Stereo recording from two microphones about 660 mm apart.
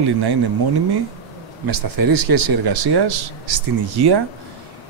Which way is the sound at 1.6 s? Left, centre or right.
Right.